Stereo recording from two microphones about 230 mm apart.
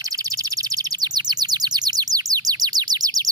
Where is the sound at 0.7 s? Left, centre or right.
Centre.